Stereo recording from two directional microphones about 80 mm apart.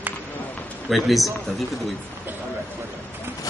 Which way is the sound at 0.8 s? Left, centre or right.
Centre.